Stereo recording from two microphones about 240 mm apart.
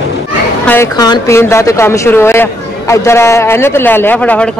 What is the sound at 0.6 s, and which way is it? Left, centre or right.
A woman's voice, centre.